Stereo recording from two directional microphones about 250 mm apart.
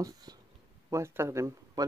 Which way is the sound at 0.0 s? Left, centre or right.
Centre.